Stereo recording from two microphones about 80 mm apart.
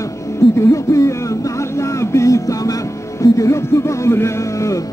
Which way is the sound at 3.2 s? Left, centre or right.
Left.